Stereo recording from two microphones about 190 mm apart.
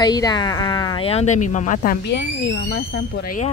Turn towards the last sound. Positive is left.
turn(degrees=50)  # may be behind; listen again after turning